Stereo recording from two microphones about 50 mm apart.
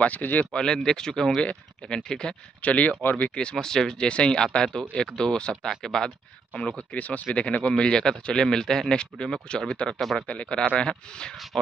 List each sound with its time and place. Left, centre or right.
0.0 s speech: left
0.5 s speech: centre
1.4 s speech: left
2.6 s speech: left
3.0 s speech: left
3.5 s speech: centre
6.9 s speech: left
9.9 s speech: centre
10.2 s speech: left